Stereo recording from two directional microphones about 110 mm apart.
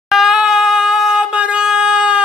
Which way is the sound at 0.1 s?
5° right (ahead or behind).